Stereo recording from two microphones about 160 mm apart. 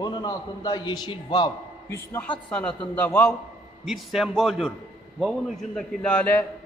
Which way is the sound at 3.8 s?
Centre (ahead or behind).